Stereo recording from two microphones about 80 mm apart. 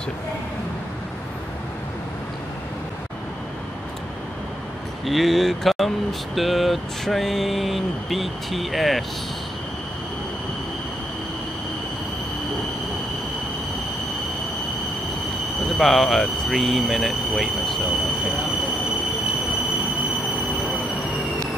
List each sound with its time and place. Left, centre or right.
5.0 s vehicle: centre
15.8 s vehicle: centre